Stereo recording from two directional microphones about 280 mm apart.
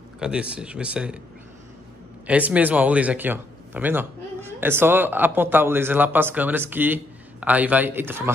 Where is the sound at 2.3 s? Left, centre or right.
Centre.